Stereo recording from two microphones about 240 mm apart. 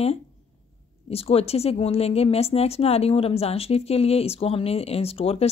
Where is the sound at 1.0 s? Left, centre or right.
Left.